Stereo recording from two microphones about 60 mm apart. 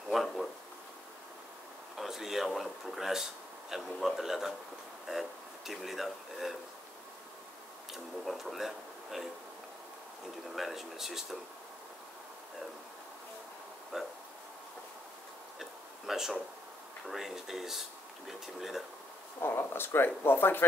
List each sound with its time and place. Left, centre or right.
0.1 s speech: centre
2.0 s speech: centre
5.7 s speech: centre
7.9 s speech: centre
10.5 s speech: centre
13.9 s a sound: centre
15.6 s a sound: centre
17.1 s speech: centre
19.4 s speech: left